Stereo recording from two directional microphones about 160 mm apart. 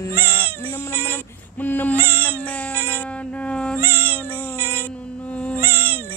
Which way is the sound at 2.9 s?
10° left (ahead or behind).